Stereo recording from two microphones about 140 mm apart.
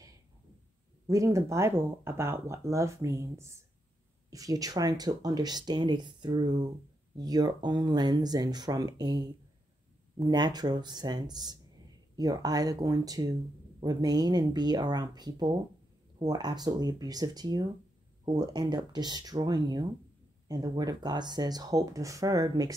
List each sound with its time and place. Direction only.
1.0 s speech: 20° right (ahead or behind)